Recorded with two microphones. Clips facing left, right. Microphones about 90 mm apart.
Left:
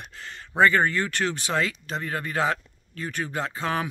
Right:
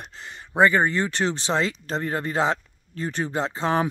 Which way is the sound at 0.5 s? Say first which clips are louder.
Right 1 dB; 20° right (ahead or behind).